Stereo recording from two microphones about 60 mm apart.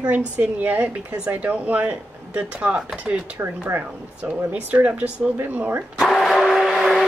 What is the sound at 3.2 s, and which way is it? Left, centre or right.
A woman's voice, right.